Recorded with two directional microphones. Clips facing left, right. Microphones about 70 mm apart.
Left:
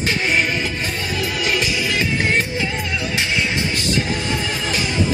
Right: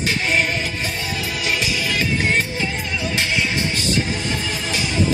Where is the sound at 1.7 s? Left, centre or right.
Left.